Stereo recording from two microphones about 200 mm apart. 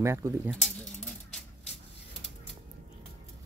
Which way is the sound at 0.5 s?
5° left (ahead or behind).